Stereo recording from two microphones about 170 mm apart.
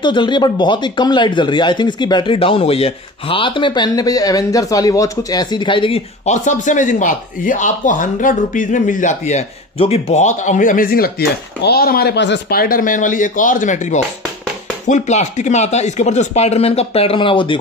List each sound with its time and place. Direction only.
0.0 s speech: 25° left (ahead or behind)